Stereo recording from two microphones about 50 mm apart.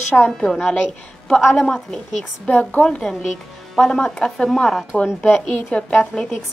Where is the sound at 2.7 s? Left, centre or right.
Left.